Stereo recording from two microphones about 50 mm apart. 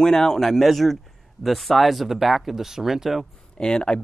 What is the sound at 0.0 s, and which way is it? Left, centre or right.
Speech, centre.